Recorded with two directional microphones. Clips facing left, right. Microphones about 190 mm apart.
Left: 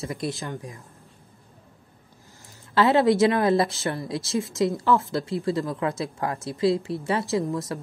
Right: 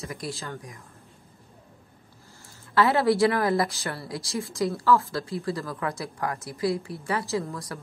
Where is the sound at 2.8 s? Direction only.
20° left (ahead or behind).